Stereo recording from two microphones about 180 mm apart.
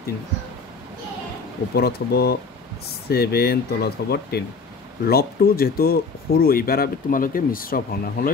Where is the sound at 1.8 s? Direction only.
60° left (ahead or behind).